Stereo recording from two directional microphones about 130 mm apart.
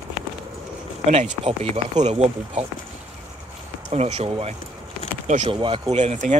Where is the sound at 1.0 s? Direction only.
55° right (ahead or behind).